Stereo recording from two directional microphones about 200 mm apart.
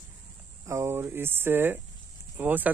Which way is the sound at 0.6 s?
15° right (ahead or behind).